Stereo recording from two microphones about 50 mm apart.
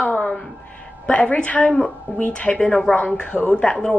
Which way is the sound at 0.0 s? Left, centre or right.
Left.